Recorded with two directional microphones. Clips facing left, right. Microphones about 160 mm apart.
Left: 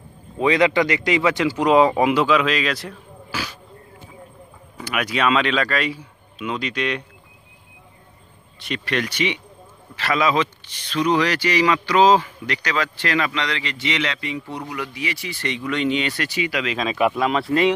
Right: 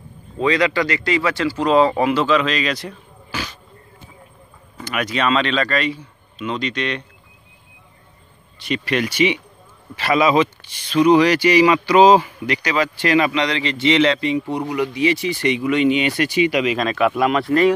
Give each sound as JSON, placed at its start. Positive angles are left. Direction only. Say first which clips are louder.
{"t": 0.4, "sound": "speech", "louder": "left 1 dB", "side_deg": 20}
{"t": 4.7, "sound": "speech", "louder": "right 1 dB", "side_deg": 5}
{"t": 8.5, "sound": "speech", "louder": "right 4 dB", "side_deg": 0}
{"t": 17.5, "sound": "speech", "louder": "right 3 dB", "side_deg": 30}